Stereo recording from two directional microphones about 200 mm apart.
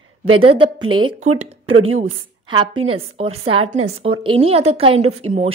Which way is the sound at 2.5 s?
25° right (ahead or behind).